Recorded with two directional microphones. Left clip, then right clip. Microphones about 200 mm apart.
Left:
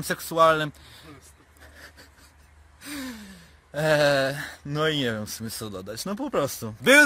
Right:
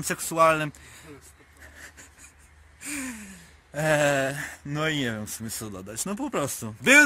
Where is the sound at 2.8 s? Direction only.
Centre (ahead or behind).